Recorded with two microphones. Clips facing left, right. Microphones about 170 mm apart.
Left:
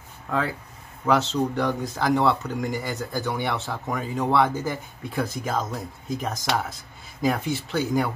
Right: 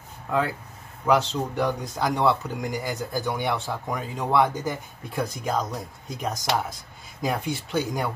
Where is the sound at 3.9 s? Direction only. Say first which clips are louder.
Left 5 dB; 15° right (ahead or behind).